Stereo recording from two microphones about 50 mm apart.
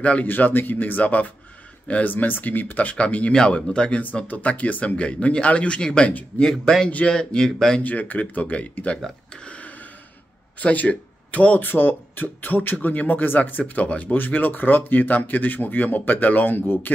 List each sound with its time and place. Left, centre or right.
0.0 s speech: left
0.3 s speech: left; by 7.5 s centre
7.8 s speech: left
9.3 s a sound: left
10.6 s speech: left